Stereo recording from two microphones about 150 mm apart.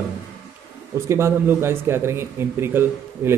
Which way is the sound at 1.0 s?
20° right (ahead or behind).